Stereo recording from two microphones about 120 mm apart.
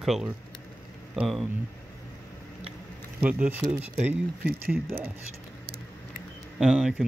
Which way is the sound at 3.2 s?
10° right (ahead or behind).